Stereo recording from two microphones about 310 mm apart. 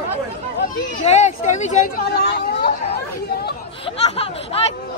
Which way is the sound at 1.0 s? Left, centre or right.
Left.